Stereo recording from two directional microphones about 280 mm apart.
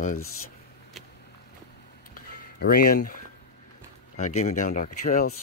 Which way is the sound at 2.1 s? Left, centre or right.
Left.